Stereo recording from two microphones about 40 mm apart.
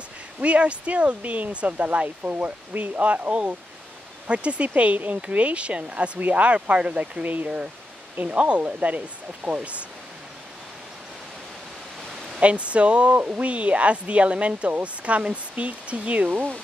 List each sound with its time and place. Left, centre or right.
0.4 s speech: right
12.4 s speech: right